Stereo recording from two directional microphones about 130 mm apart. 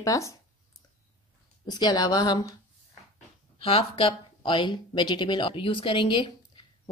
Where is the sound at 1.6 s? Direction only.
35° left (ahead or behind).